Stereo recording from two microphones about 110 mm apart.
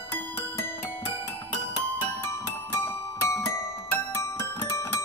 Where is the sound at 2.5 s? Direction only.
20° left (ahead or behind).